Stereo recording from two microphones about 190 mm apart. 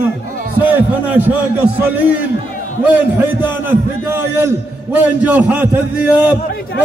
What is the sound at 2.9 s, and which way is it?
A man's voice, 10° right (ahead or behind).